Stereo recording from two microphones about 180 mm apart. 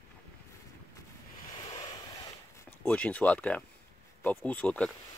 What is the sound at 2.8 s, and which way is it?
Speech, 10° left (ahead or behind).